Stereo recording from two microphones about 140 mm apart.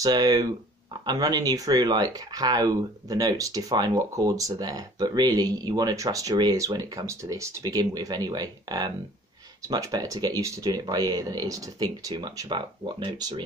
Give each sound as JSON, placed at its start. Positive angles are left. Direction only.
{"t": 0.0, "sound": "speech", "side_deg": -30}